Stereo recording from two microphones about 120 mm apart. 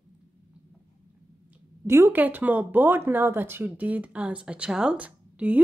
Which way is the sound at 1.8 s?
20° right (ahead or behind).